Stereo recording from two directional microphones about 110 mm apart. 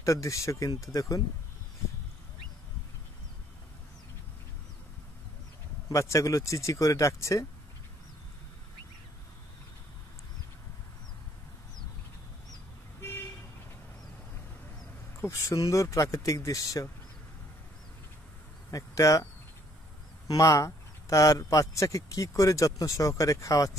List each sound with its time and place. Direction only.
0.0 s a man's voice: 30° left (ahead or behind)
5.9 s a man's voice: 30° left (ahead or behind)
15.1 s a man's voice: 30° left (ahead or behind)
18.7 s speech: 30° left (ahead or behind)
20.2 s a man's voice: 30° left (ahead or behind)